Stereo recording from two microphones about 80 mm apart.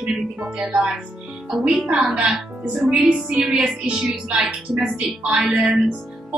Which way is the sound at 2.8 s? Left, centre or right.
Centre.